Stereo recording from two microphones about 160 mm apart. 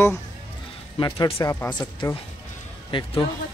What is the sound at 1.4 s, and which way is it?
Speech, 15° left (ahead or behind).